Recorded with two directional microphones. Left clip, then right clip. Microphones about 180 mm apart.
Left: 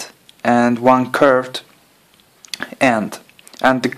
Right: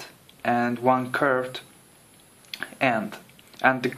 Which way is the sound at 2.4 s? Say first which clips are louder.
Left 8 dB; 45° left (ahead or behind).